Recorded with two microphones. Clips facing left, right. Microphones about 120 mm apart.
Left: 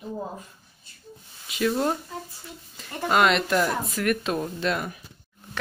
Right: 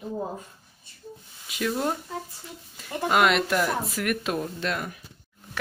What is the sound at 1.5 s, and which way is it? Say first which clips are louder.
Speech: left 3 dB; centre (ahead or behind).